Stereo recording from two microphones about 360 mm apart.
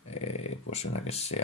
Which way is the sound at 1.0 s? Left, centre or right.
Centre.